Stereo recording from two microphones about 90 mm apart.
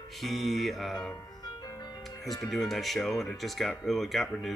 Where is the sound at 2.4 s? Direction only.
5° left (ahead or behind).